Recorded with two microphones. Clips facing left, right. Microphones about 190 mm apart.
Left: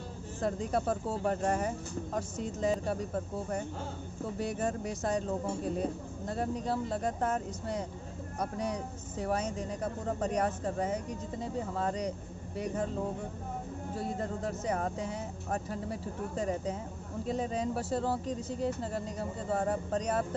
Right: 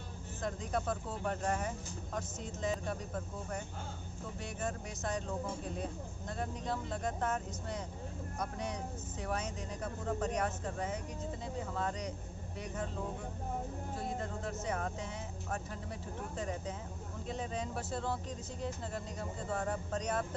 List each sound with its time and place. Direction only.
0.4 s speech: 35° left (ahead or behind)
4.4 s speech: 35° left (ahead or behind)
13.9 s speech: 35° left (ahead or behind)